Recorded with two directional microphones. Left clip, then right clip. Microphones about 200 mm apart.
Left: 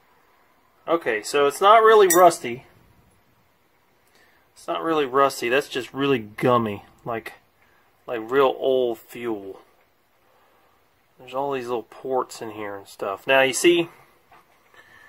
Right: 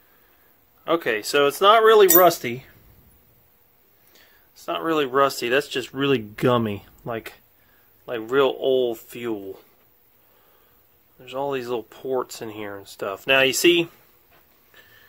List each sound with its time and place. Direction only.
0.8 s speech: 25° right (ahead or behind)
4.6 s speech: 15° right (ahead or behind)
11.2 s speech: 15° right (ahead or behind)